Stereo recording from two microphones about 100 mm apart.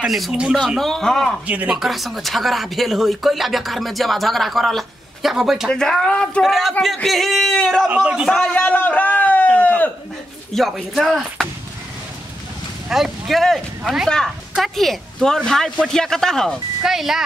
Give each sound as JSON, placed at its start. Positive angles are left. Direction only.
{"t": 0.0, "sound": "speech", "side_deg": -5}
{"t": 0.6, "sound": "speech", "side_deg": 5}
{"t": 1.5, "sound": "speech", "side_deg": -15}
{"t": 1.8, "sound": "speech", "side_deg": 0}
{"t": 7.8, "sound": "speech", "side_deg": -10}
{"t": 8.3, "sound": "speech", "side_deg": 5}
{"t": 8.5, "sound": "a sound", "side_deg": 15}
{"t": 10.5, "sound": "speech", "side_deg": 0}
{"t": 12.9, "sound": "speech", "side_deg": 0}